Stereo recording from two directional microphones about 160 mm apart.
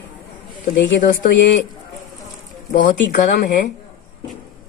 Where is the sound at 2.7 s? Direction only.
50° left (ahead or behind).